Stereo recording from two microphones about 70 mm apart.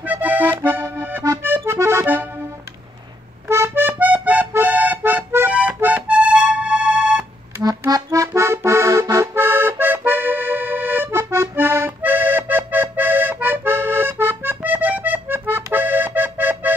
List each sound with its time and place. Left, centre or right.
0.0 s accordion: right
3.4 s accordion: right
4.6 s music: right
7.9 s accordion: right
8.3 s accordion: right
9.3 s accordion: right
12.0 s accordion: right